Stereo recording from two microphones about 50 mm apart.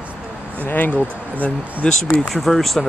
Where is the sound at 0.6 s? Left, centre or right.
Left.